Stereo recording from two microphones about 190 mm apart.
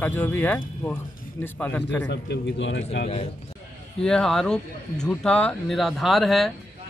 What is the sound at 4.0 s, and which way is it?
Speech, 5° left (ahead or behind).